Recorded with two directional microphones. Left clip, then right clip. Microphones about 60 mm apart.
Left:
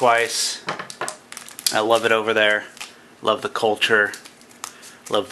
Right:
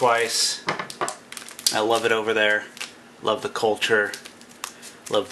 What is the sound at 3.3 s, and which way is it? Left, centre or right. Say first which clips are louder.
Speech: left 3 dB; left.